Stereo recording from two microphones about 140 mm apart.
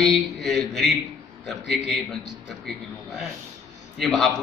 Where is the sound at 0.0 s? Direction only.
Centre (ahead or behind).